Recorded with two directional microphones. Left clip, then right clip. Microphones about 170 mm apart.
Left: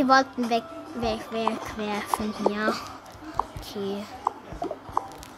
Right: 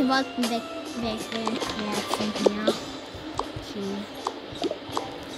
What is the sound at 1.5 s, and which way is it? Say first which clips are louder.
Speech: right 2 dB; 35° right (ahead or behind).